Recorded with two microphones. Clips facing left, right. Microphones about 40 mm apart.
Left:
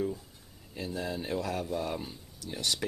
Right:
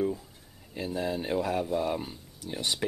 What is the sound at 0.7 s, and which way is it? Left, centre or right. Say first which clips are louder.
Speech: right 4 dB; centre.